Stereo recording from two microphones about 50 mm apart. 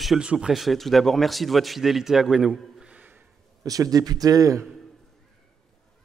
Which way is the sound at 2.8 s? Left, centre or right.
Right.